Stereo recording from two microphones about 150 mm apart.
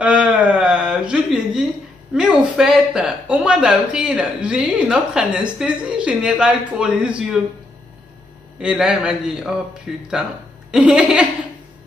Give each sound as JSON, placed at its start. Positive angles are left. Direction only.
{"t": 0.0, "sound": "a sound", "side_deg": -5}
{"t": 2.1, "sound": "speech", "side_deg": -5}
{"t": 8.5, "sound": "a man's voice", "side_deg": -5}